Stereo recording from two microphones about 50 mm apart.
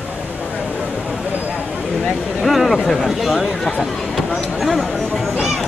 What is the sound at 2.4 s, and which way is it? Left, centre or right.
Speech, centre.